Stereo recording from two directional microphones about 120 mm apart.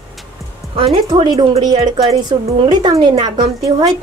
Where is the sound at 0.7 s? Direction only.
45° right (ahead or behind).